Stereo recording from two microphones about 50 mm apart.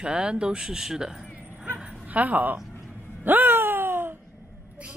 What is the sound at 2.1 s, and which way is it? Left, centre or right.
Speech, right.